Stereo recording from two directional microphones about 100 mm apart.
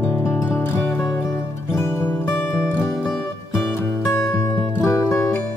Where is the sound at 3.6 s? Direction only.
25° left (ahead or behind).